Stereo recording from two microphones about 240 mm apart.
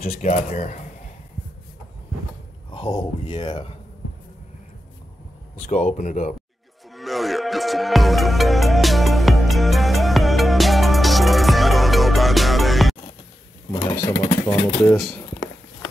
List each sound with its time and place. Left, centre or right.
0.0 s speech: left
2.7 s speech: centre
5.7 s speech: left
6.9 s music: centre
13.7 s a sound: centre
14.0 s speech: centre
15.0 s speech: centre